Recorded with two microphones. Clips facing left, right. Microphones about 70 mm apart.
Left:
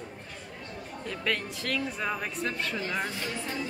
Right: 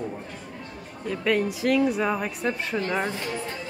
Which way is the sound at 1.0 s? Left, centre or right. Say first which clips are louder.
Right 8 dB; centre.